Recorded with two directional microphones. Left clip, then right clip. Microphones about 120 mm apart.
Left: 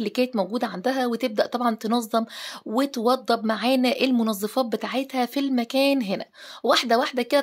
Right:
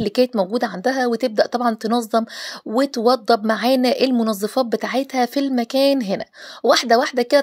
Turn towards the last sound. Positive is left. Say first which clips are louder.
# right 6 dB
turn(degrees=-40)  # may be behind; listen again after turning